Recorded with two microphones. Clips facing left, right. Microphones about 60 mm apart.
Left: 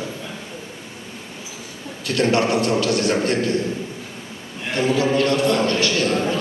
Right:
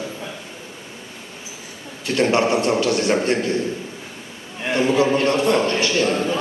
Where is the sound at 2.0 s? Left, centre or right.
Right.